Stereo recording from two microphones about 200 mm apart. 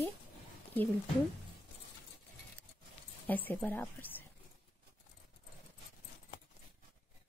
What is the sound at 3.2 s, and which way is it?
A woman's voice, 10° left (ahead or behind).